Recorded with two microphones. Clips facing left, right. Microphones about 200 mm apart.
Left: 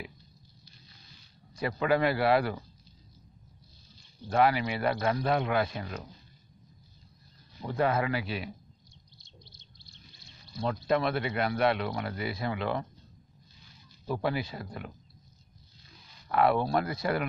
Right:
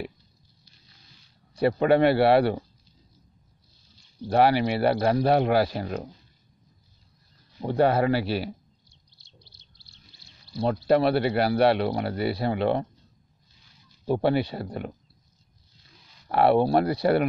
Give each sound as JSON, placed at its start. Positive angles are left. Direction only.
{"t": 1.5, "sound": "speech", "side_deg": -35}
{"t": 4.3, "sound": "speech", "side_deg": -35}
{"t": 7.6, "sound": "speech", "side_deg": -35}
{"t": 9.2, "sound": "bird", "side_deg": -35}
{"t": 10.5, "sound": "speech", "side_deg": -35}
{"t": 14.0, "sound": "speech", "side_deg": -30}
{"t": 16.3, "sound": "speech", "side_deg": -35}